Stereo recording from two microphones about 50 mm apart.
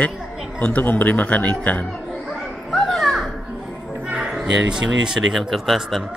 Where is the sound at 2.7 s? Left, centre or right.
Centre.